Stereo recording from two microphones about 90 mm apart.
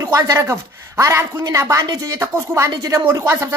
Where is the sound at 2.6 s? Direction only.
45° right (ahead or behind).